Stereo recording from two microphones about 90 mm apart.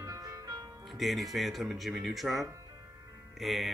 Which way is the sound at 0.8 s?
Centre (ahead or behind).